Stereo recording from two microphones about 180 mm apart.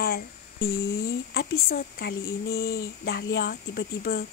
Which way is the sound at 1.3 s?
60° left (ahead or behind).